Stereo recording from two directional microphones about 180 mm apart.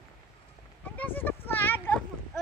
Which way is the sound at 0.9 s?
10° left (ahead or behind).